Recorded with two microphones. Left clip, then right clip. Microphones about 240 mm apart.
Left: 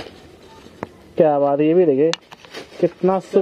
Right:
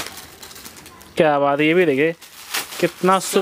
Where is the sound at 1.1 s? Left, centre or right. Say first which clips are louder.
Left 1 dB; right.